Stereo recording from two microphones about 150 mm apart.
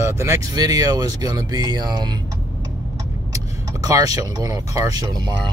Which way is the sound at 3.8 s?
20° right (ahead or behind).